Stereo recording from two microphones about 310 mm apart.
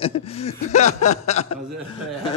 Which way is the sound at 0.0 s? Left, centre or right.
Centre.